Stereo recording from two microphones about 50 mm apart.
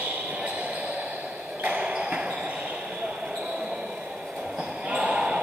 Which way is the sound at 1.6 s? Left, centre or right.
Right.